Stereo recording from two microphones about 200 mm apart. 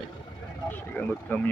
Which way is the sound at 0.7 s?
10° left (ahead or behind).